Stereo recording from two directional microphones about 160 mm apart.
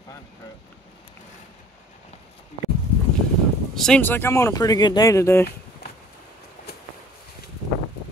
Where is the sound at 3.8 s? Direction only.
10° left (ahead or behind).